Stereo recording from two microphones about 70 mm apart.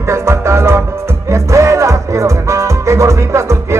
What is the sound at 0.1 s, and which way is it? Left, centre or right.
Music, right.